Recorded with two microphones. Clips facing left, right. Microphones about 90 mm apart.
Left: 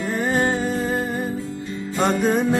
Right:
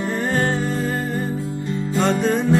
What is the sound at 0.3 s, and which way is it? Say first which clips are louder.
Music: left 1 dB; 15° left (ahead or behind).